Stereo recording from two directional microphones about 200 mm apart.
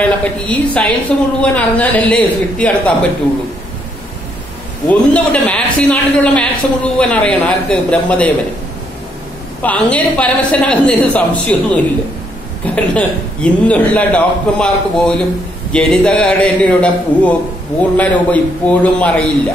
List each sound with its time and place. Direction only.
0.0 s a woman's voice: 5° left (ahead or behind)
4.8 s a woman's voice: 5° left (ahead or behind)
9.6 s a woman's voice: 5° left (ahead or behind)